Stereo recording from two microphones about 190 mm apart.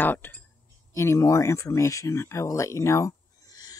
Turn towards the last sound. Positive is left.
turn(degrees=20)  # may be behind; listen again after turning